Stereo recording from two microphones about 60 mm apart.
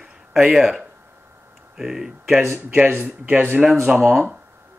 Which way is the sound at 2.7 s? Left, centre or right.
Right.